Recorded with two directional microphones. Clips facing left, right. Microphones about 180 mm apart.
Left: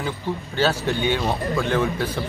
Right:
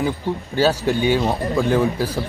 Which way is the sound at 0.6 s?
10° right (ahead or behind).